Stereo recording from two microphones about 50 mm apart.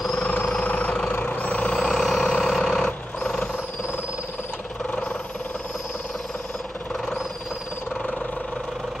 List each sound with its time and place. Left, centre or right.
0.7 s vehicle: left
1.1 s vehicle: left
1.8 s vehicle: centre